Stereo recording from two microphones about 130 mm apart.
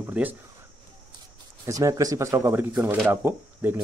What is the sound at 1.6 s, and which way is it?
Speech, 25° right (ahead or behind).